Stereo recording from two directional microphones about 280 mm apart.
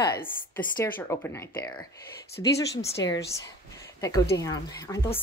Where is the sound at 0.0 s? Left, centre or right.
Centre.